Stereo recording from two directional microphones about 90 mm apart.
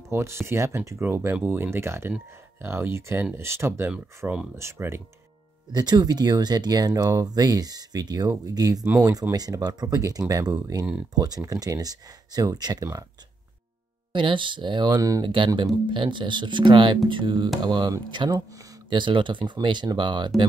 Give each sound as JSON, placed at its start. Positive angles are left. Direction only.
{"t": 0.1, "sound": "speech", "side_deg": -30}
{"t": 4.2, "sound": "speech", "side_deg": -20}
{"t": 4.6, "sound": "speech", "side_deg": -30}
{"t": 5.7, "sound": "speech", "side_deg": -50}
{"t": 14.1, "sound": "speech", "side_deg": -65}
{"t": 15.0, "sound": "speech", "side_deg": -40}
{"t": 15.2, "sound": "speech", "side_deg": -65}